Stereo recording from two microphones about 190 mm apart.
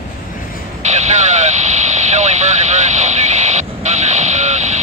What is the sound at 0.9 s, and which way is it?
Vehicle, 35° right (ahead or behind).